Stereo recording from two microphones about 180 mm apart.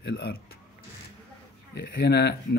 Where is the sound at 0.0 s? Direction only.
70° left (ahead or behind).